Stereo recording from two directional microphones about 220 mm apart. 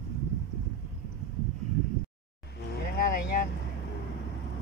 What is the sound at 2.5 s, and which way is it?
Boat, 45° left (ahead or behind).